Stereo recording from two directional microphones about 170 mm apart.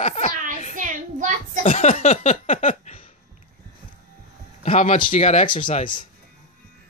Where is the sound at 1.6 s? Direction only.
45° left (ahead or behind).